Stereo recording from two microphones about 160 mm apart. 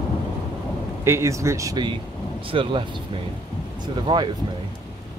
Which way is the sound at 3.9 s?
30° right (ahead or behind).